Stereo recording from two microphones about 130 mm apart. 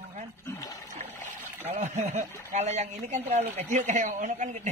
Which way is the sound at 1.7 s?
65° right (ahead or behind).